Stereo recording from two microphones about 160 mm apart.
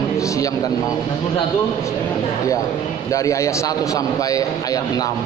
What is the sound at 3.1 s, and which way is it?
A man's voice, 20° left (ahead or behind).